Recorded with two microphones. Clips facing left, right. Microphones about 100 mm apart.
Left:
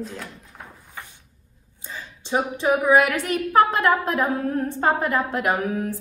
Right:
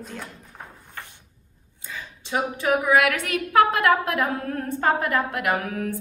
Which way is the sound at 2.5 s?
30° left (ahead or behind).